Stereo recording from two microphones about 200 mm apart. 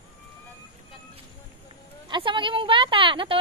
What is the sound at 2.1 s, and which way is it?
Speech, 25° right (ahead or behind).